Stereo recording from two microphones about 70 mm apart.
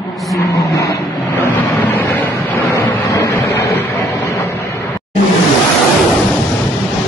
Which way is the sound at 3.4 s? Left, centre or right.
Left.